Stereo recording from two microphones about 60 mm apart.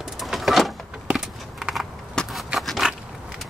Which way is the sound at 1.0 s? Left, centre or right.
Centre.